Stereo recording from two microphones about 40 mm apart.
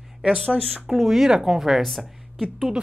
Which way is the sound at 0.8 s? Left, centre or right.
Centre.